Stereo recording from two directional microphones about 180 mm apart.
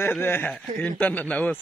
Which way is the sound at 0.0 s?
10° left (ahead or behind).